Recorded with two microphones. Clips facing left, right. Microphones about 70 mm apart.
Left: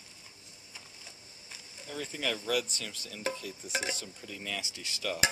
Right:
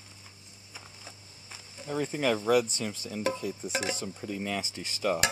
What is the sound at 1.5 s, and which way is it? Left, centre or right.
Insect, centre.